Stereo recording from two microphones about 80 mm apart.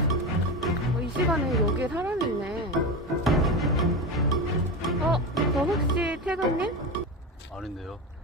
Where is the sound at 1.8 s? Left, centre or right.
Centre.